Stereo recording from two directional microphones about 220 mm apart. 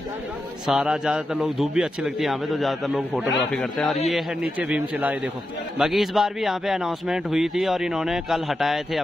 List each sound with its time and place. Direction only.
0.7 s a man's voice: 5° right (ahead or behind)